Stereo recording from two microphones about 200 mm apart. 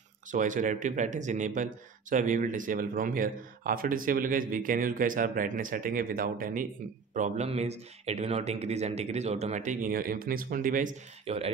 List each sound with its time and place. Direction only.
0.3 s a man's voice: 40° right (ahead or behind)
7.2 s speech: 35° right (ahead or behind)